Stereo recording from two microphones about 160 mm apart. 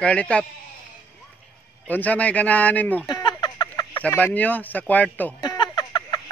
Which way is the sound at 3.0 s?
25° left (ahead or behind).